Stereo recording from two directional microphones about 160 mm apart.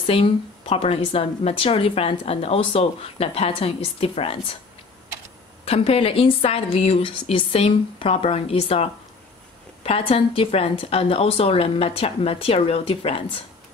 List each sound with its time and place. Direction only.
0.0 s a woman's voice: 35° left (ahead or behind)
5.7 s a woman's voice: 35° left (ahead or behind)